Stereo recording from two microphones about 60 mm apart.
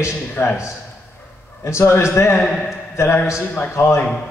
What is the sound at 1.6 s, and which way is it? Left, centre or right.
Speech, left.